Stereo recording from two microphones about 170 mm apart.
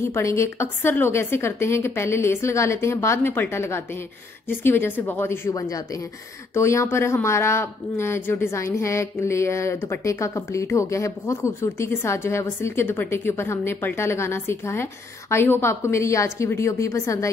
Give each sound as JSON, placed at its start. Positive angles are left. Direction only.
{"t": 0.0, "sound": "speech", "side_deg": 15}